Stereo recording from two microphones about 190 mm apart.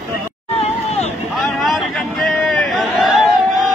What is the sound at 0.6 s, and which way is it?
Hubbub, 35° left (ahead or behind).